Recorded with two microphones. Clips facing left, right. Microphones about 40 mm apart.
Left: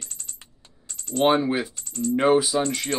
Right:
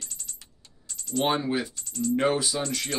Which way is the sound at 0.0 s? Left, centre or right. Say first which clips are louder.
Left 1 dB; left.